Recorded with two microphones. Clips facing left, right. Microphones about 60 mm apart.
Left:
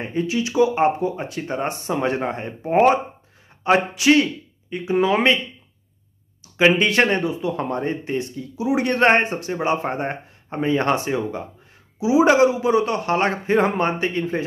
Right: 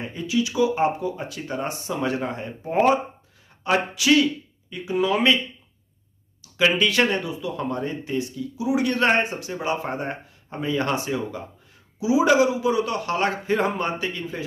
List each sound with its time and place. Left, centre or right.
0.0 s speech: left
6.4 s a sound: left
6.7 s speech: left